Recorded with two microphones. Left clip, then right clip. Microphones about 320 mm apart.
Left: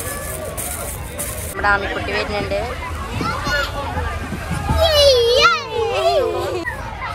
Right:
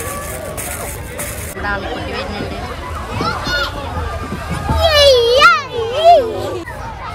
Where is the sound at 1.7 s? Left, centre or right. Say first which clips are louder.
Left 4 dB; centre.